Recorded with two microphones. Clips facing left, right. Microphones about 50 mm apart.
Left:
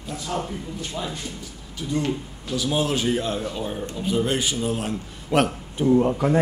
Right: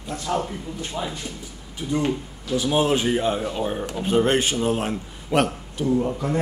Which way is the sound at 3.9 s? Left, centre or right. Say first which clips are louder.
Right 4 dB; right.